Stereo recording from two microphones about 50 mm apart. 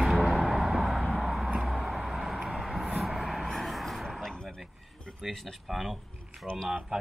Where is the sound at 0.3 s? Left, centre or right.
Centre.